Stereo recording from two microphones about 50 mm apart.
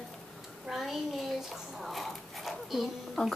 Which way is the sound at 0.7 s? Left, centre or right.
Centre.